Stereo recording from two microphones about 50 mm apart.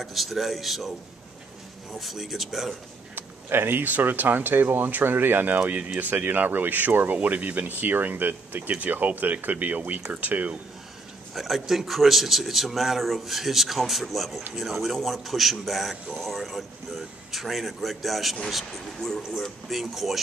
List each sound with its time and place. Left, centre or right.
0.0 s a man's voice: centre
2.0 s a man's voice: centre
3.2 s speech: right
5.6 s speech: right
11.3 s a man's voice: centre
18.9 s a man's voice: centre